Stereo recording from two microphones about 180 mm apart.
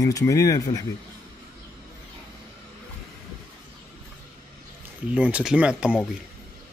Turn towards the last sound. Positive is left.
turn(degrees=-5)  # may be behind; listen again after turning